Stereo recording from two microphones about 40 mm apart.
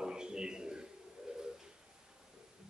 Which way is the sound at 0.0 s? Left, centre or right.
Centre.